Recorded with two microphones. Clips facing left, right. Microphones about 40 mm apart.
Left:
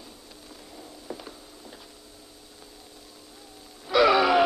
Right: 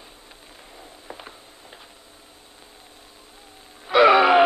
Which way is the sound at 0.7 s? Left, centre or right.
Right.